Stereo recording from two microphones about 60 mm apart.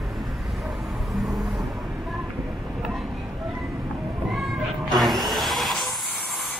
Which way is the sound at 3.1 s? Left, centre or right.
Right.